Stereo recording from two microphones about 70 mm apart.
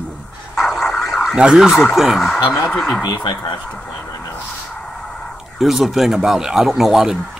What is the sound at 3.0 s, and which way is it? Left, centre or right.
Speech, left.